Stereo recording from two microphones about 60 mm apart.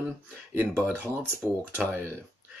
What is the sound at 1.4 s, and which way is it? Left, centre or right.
Speech, right.